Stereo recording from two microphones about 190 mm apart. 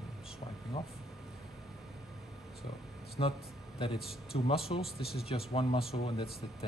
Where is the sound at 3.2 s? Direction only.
30° left (ahead or behind).